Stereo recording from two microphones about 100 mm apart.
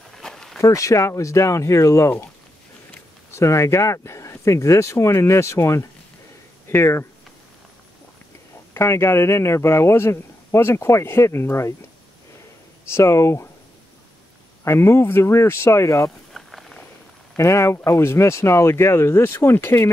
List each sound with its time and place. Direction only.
0.1 s a sound: 5° left (ahead or behind)
0.6 s speech: 30° left (ahead or behind)
3.3 s speech: 30° left (ahead or behind)
8.7 s speech: 25° left (ahead or behind)
12.8 s speech: 30° left (ahead or behind)
14.6 s speech: 25° left (ahead or behind)
16.3 s a sound: centre (ahead or behind)
17.4 s speech: 30° left (ahead or behind)